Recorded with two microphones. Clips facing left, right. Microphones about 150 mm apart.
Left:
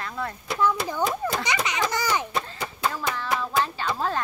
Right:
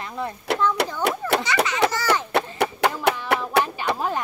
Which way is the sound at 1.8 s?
65° right (ahead or behind).